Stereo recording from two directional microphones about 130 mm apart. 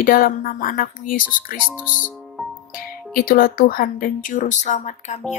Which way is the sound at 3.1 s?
90° left.